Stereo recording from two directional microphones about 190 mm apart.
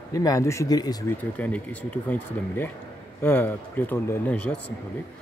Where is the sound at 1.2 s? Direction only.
10° left (ahead or behind).